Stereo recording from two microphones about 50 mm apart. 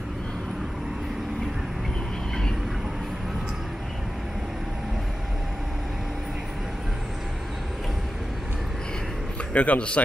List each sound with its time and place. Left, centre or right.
9.5 s a man's voice: left